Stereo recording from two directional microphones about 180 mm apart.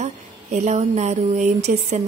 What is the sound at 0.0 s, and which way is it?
Speech, 40° right (ahead or behind).